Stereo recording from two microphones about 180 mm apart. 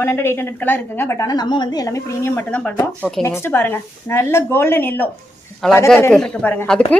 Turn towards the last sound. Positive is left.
turn(degrees=10)  # may be behind; listen again after turning